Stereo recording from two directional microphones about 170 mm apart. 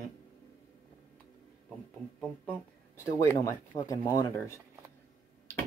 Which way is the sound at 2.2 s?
10° left (ahead or behind).